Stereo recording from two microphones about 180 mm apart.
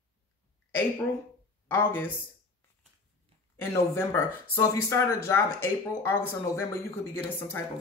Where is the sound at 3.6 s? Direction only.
10° left (ahead or behind).